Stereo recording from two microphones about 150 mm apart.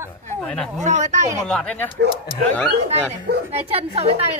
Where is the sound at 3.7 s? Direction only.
40° right (ahead or behind).